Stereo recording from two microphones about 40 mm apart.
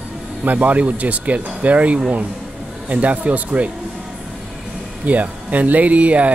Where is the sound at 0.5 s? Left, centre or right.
Right.